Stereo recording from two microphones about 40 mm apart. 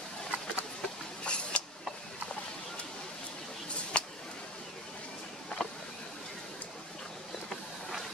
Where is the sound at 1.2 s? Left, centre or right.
Left.